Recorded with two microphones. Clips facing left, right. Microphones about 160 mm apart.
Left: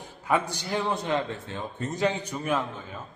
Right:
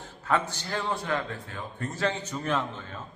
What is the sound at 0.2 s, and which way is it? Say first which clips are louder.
A man's voice: left 1 dB; 15° left (ahead or behind).